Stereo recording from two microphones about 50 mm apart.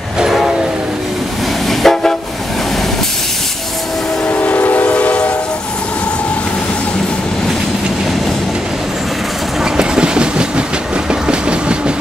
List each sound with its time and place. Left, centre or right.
0.2 s train: centre
1.7 s train: centre
4.3 s train: left
9.8 s train: centre